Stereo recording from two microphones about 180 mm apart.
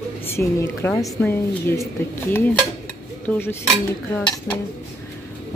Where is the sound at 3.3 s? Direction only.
10° left (ahead or behind).